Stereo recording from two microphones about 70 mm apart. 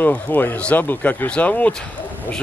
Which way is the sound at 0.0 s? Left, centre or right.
Left.